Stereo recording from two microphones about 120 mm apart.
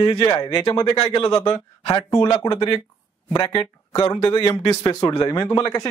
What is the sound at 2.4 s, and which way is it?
Speech, 35° left (ahead or behind).